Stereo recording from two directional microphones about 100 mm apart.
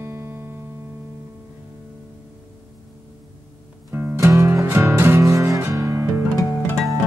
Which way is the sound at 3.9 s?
25° right (ahead or behind).